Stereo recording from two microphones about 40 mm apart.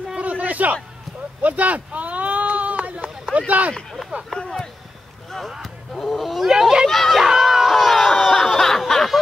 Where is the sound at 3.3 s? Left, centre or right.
Right.